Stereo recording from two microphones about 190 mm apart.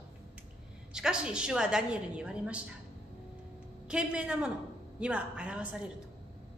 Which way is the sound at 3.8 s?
5° right (ahead or behind).